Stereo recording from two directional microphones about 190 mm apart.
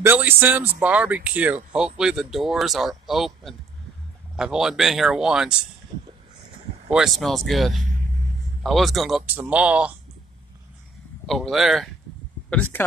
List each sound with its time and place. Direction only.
0.0 s speech: 10° right (ahead or behind)
6.9 s speech: centre (ahead or behind)
7.7 s vehicle: 45° right (ahead or behind)
8.6 s speech: centre (ahead or behind)
11.2 s speech: centre (ahead or behind)